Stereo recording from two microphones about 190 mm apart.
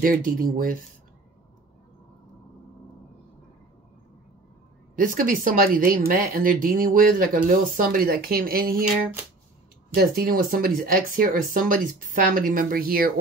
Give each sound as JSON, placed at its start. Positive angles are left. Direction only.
{"t": 0.0, "sound": "speech", "side_deg": -50}
{"t": 4.9, "sound": "speech", "side_deg": -45}